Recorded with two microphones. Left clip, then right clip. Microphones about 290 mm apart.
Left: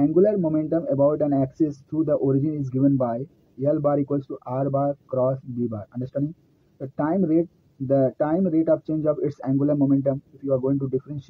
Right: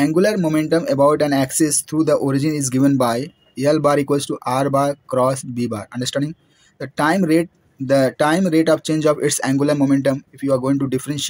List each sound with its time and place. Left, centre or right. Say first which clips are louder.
0.0 s speech: right 3 dB; right